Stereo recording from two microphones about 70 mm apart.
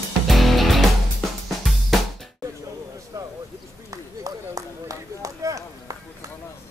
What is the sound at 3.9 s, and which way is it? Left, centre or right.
Run, right.